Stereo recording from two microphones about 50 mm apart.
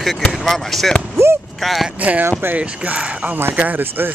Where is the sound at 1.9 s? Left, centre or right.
Right.